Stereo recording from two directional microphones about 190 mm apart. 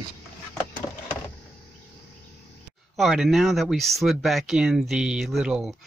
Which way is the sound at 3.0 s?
Centre (ahead or behind).